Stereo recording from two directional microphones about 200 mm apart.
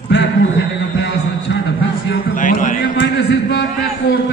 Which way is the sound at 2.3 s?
40° left (ahead or behind).